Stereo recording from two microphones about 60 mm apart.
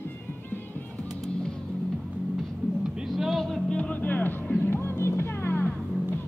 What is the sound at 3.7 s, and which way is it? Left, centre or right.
Music, left.